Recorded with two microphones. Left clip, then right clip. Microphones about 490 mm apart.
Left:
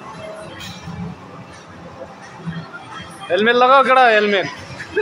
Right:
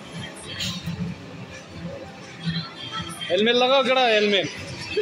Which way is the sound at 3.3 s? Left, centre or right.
Right.